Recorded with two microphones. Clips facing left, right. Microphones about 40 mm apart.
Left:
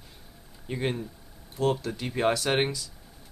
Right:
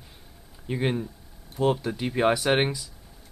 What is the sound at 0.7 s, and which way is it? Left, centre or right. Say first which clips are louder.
Speech: right 3 dB; centre.